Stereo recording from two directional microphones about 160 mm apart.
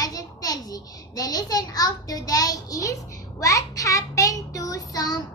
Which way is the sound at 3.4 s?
20° left (ahead or behind).